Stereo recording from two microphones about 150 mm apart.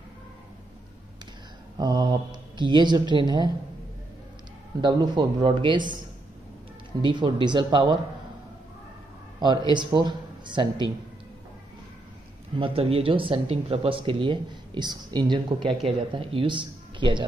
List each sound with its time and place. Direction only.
1.8 s speech: 25° right (ahead or behind)
4.8 s speech: 30° right (ahead or behind)
7.0 s speech: 35° right (ahead or behind)
9.4 s speech: 30° right (ahead or behind)
12.5 s speech: 35° right (ahead or behind)